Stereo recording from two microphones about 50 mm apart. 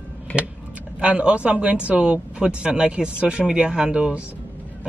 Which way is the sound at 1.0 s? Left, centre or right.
Right.